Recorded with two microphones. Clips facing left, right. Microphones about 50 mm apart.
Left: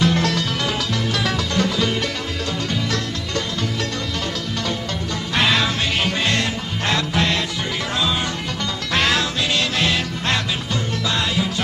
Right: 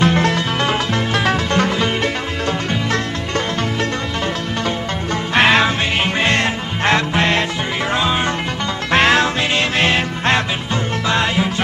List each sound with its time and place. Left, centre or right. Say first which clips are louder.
0.0 s music: right 4 dB; right
5.3 s music: right 6 dB; right